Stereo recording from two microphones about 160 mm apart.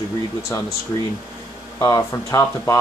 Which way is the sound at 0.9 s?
20° left (ahead or behind).